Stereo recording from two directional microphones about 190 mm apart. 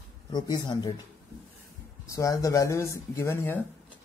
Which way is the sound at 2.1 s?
15° left (ahead or behind).